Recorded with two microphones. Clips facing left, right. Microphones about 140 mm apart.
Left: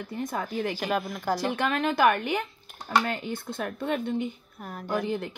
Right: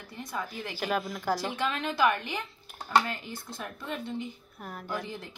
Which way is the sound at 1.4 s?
55° left (ahead or behind).